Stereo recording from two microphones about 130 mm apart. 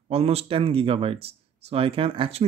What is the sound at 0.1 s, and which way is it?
A man's voice, 50° right (ahead or behind).